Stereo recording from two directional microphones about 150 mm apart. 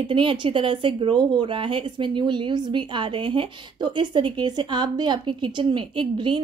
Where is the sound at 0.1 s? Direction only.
35° right (ahead or behind).